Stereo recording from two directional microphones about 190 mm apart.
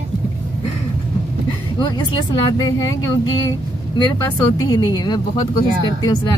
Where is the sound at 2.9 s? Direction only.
15° left (ahead or behind).